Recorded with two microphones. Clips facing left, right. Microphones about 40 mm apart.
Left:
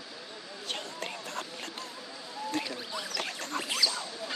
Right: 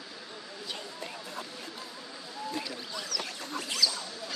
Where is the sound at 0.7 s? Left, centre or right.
Left.